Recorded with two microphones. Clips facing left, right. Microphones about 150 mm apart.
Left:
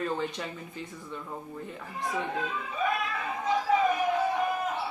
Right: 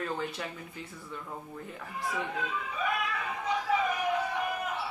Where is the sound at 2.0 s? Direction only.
30° left (ahead or behind).